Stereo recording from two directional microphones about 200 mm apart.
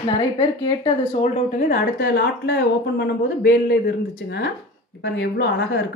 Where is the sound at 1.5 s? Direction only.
45° left (ahead or behind).